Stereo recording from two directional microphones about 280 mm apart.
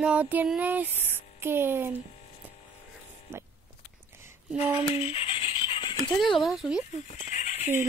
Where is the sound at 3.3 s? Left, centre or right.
Centre.